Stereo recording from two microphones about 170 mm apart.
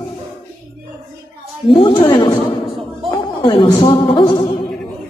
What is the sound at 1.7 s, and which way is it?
A woman's voice, 30° left (ahead or behind).